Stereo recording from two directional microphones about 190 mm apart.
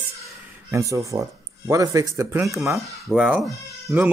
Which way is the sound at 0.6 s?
15° right (ahead or behind).